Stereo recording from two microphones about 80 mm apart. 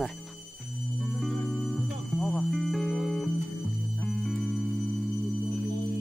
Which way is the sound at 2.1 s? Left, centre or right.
Left.